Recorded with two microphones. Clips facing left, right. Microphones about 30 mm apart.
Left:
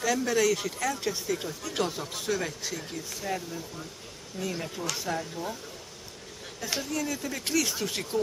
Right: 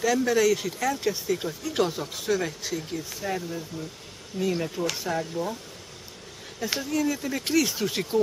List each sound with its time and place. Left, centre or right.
0.0 s speech: centre
6.6 s speech: centre